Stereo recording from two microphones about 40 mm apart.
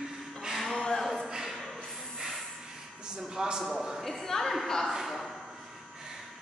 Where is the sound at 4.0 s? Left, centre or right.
Centre.